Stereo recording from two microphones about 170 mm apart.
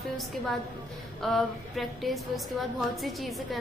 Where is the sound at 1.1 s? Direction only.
Centre (ahead or behind).